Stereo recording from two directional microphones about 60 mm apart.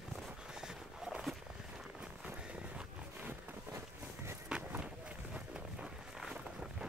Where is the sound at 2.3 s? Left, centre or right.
Centre.